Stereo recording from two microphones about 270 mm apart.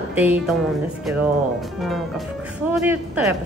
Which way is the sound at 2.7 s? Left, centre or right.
Centre.